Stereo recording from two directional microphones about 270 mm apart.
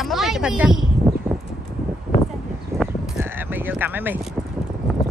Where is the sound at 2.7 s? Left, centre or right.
Centre.